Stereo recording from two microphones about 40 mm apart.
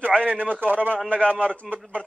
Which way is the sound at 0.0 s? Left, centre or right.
Right.